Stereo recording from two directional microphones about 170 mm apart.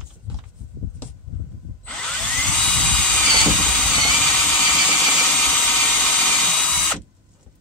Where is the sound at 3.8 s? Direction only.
10° left (ahead or behind).